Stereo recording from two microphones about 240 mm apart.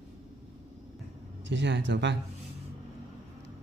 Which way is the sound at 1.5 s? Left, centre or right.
Right.